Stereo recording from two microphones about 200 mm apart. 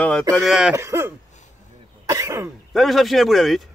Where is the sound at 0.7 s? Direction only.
15° right (ahead or behind).